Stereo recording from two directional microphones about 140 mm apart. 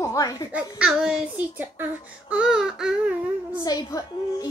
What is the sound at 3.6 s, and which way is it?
Speech, 25° left (ahead or behind).